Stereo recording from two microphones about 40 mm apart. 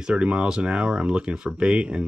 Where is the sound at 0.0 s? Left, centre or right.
Right.